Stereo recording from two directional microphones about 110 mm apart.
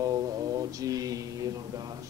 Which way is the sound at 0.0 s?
35° right (ahead or behind).